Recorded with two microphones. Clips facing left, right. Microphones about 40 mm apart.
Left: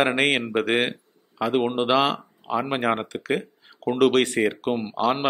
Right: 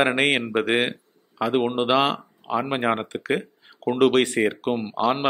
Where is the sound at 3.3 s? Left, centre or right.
Centre.